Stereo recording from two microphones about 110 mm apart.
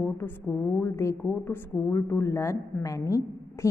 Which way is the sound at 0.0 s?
10° left (ahead or behind).